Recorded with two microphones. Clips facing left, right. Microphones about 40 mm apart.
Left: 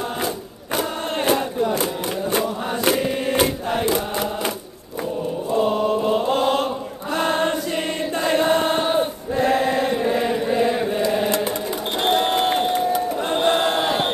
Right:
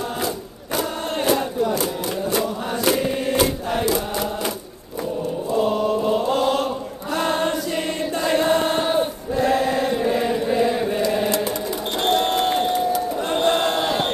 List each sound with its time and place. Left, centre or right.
0.7 s crowd: left
2.3 s chant: left
5.5 s choir: left
9.9 s chant: centre
12.0 s a sound: centre
13.3 s a sound: centre